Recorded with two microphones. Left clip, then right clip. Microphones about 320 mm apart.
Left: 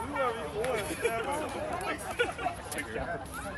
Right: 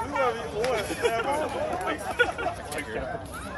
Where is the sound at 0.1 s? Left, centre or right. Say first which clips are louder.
Right 4 dB; right.